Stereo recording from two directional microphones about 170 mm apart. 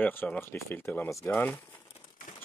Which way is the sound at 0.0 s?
10° left (ahead or behind).